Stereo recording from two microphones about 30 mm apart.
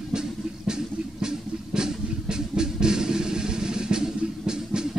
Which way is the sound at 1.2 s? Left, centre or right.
Right.